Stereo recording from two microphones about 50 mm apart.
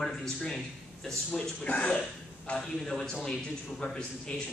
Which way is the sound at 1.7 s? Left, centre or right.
Left.